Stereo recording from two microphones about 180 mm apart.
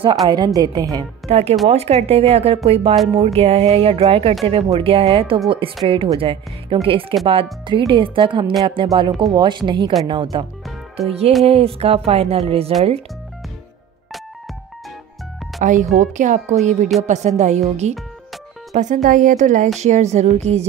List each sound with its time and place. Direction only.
0.0 s speech: 20° right (ahead or behind)
1.3 s speech: 35° right (ahead or behind)
15.6 s speech: 45° right (ahead or behind)